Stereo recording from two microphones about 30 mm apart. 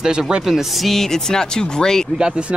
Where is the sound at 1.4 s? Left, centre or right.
Left.